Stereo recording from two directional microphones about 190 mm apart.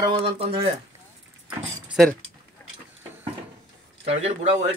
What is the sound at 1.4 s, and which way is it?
Keys jangling, 5° right (ahead or behind).